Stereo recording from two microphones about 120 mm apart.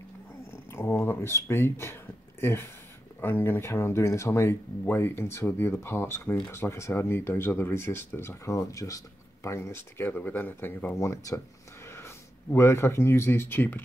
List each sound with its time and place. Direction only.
0.5 s a sound: 20° left (ahead or behind)
3.2 s speech: 20° left (ahead or behind)
11.0 s speech: 25° left (ahead or behind)